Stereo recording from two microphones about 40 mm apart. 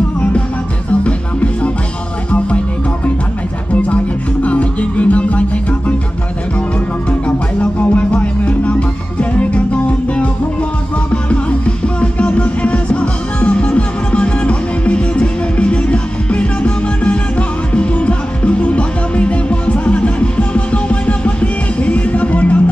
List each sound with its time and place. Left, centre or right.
1.0 s music: left
3.7 s music: left
7.8 s music: left